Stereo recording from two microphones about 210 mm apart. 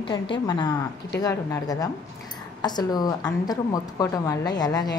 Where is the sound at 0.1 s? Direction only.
20° left (ahead or behind).